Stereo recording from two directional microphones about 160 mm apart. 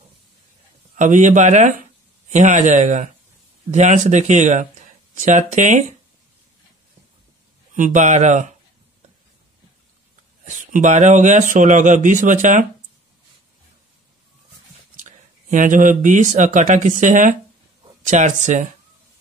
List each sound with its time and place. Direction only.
0.9 s a man's voice: 50° right (ahead or behind)
7.7 s a man's voice: 50° right (ahead or behind)
10.4 s a man's voice: 50° right (ahead or behind)
15.0 s a man's voice: 55° right (ahead or behind)